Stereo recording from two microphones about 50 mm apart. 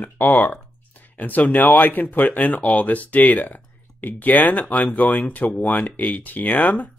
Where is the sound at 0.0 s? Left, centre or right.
Left.